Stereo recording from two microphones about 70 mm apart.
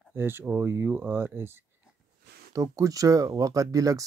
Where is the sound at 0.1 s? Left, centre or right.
Right.